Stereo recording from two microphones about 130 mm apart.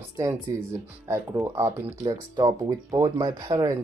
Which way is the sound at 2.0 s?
30° right (ahead or behind).